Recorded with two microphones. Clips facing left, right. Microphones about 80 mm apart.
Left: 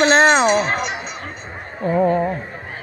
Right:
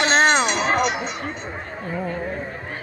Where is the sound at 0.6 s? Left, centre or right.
Centre.